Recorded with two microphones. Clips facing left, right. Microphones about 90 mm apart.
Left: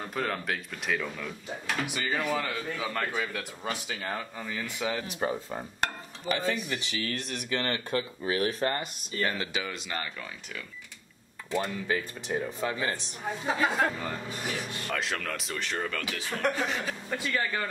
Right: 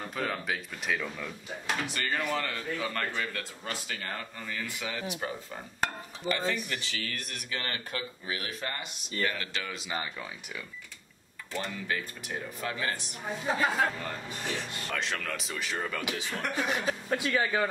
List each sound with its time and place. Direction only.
0.1 s a man's voice: centre (ahead or behind); by 9.3 s 40° left (ahead or behind)
9.4 s a man's voice: 15° left (ahead or behind)
9.7 s speech: centre (ahead or behind)
11.5 s a man's voice: 15° left (ahead or behind)
13.5 s speech: centre (ahead or behind)
16.0 s a man's voice: 20° right (ahead or behind)